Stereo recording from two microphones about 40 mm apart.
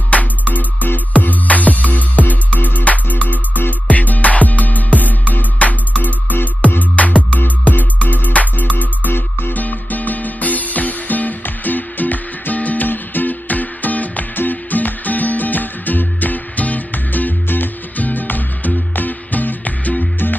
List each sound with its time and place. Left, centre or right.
0.1 s music: left